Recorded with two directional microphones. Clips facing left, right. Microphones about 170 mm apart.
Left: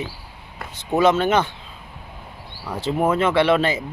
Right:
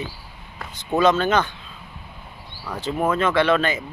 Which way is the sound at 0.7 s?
20° left (ahead or behind).